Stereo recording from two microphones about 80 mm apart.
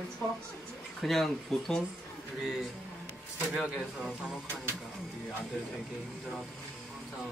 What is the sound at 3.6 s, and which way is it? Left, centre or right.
Speech, centre.